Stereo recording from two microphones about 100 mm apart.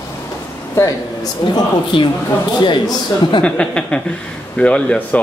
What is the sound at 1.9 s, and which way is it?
A woman's voice, 55° left (ahead or behind).